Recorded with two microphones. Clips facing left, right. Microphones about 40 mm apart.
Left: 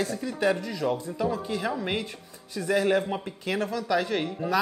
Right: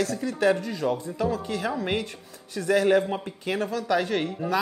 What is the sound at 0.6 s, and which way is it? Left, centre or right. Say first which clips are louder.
Speech: right 1 dB; right.